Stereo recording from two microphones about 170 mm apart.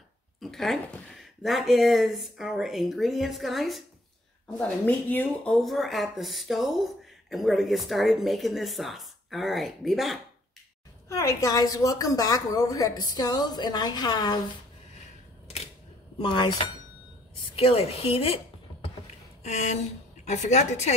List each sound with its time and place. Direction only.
0.4 s speech: centre (ahead or behind)
11.1 s a woman's voice: 20° left (ahead or behind)
16.2 s a woman's voice: 30° left (ahead or behind)
17.6 s a woman's voice: 35° left (ahead or behind)
19.4 s a woman's voice: 40° left (ahead or behind)